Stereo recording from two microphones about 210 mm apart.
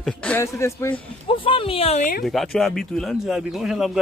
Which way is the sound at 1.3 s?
25° left (ahead or behind).